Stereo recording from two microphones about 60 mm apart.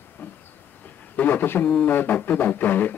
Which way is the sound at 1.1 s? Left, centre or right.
Left.